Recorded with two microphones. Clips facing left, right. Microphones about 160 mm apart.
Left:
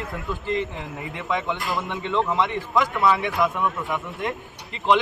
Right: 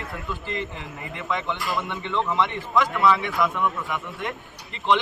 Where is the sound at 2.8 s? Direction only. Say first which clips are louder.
Even; 20° left (ahead or behind).